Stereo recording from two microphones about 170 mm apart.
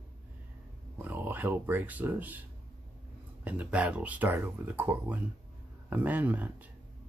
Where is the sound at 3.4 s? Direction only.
10° right (ahead or behind).